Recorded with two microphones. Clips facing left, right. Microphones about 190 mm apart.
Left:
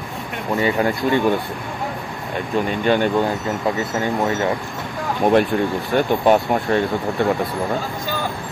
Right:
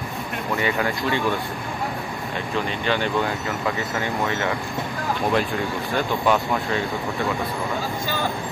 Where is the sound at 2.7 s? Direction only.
50° left (ahead or behind).